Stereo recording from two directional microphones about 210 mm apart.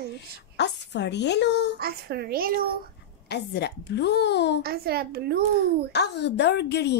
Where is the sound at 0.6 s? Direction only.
55° left (ahead or behind).